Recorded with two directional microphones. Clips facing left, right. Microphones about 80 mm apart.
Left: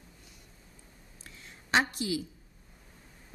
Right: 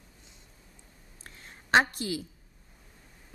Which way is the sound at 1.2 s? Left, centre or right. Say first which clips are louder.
Right 2 dB; right.